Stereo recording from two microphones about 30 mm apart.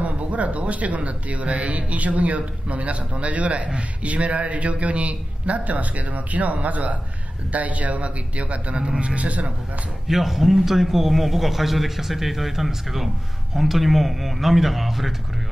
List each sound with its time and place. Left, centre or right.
0.0 s speech: right
10.0 s a man's voice: centre